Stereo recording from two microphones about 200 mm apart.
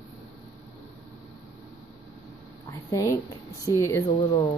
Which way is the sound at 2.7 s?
15° left (ahead or behind).